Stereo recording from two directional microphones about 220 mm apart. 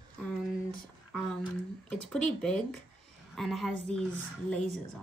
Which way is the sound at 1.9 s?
5° left (ahead or behind).